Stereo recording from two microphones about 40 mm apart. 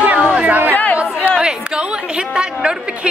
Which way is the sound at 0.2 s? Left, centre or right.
Right.